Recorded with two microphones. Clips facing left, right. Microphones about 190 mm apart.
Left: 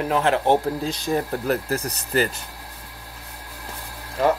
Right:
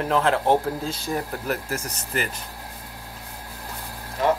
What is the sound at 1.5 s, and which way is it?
Speech, 35° left (ahead or behind).